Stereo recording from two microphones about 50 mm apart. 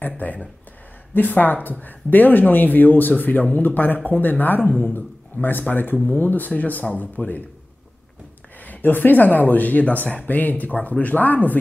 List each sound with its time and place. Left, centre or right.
0.2 s speech: left
8.5 s speech: left